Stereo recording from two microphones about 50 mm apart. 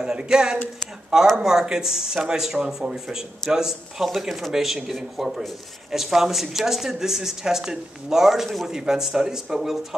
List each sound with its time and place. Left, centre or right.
0.0 s speech: centre